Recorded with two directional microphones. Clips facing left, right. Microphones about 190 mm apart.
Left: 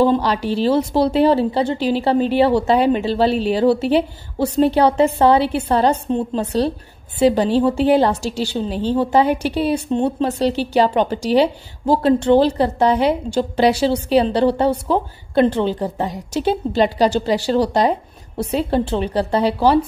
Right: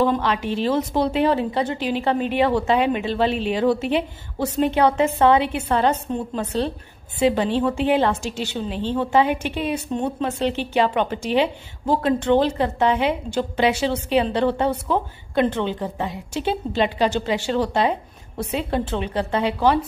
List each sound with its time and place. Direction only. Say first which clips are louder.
0.0 s a woman's voice: left 4 dB; 35° left (ahead or behind)